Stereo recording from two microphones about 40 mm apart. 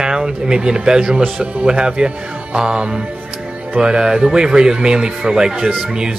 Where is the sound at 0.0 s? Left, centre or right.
Centre.